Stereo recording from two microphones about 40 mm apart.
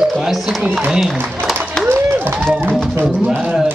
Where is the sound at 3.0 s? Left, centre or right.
Right.